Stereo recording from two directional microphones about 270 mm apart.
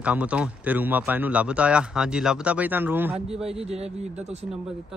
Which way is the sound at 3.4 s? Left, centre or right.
Right.